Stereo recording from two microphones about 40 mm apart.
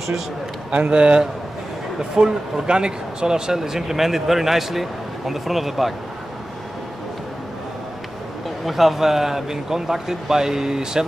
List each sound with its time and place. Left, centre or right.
0.7 s a man's voice: right; by 5.9 s centre
8.6 s speech: centre